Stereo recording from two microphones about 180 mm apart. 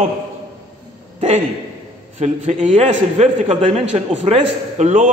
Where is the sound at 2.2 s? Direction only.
35° right (ahead or behind).